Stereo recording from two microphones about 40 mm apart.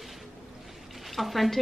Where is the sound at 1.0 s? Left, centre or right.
Centre.